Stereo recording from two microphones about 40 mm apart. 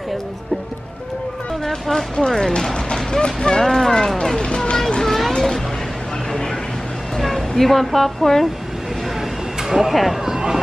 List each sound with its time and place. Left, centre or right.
1.6 s speech: centre
4.4 s music: left
5.0 s a sound: centre
7.2 s speech: centre
9.6 s speech: centre
10.2 s a sound: centre